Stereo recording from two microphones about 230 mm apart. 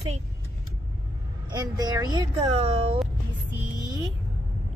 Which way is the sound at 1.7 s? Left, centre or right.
Centre.